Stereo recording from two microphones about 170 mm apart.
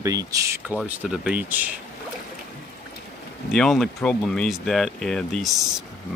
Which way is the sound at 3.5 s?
5° left (ahead or behind).